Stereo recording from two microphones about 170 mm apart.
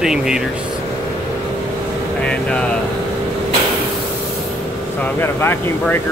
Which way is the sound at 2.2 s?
5° left (ahead or behind).